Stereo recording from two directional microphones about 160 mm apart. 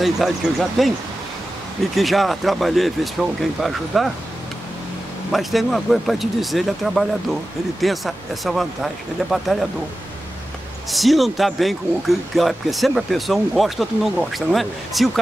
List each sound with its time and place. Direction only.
0.0 s speech: centre (ahead or behind)
2.0 s speech: centre (ahead or behind)
5.3 s speech: centre (ahead or behind)
10.9 s speech: centre (ahead or behind)